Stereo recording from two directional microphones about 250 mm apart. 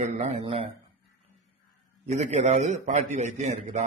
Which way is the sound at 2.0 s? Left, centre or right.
Right.